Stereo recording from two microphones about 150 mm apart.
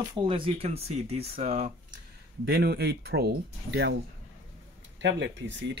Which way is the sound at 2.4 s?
90° right.